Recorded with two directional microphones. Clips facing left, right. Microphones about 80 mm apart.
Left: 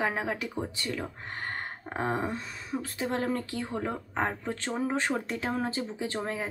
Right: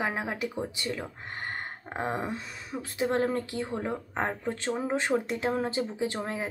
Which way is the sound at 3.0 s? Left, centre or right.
Right.